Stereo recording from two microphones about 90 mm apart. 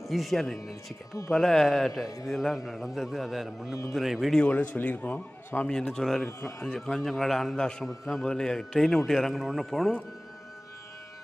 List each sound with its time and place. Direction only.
0.1 s a man's voice: centre (ahead or behind)
4.5 s a man's voice: 20° left (ahead or behind); by 9.9 s centre (ahead or behind)